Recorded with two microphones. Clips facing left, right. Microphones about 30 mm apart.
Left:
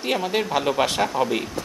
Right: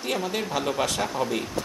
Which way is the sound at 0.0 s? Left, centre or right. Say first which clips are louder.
Left 4 dB; left.